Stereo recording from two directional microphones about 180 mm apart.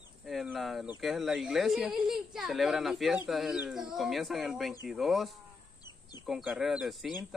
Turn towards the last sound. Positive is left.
turn(degrees=0)  # may be behind; listen again after turning